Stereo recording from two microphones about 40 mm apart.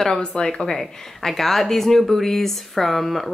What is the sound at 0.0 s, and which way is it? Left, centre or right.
Speech, centre.